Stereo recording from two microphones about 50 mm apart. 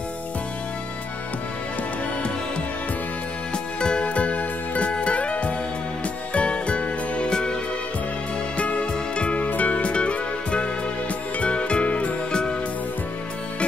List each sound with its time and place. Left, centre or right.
3.8 s music: left
8.5 s music: left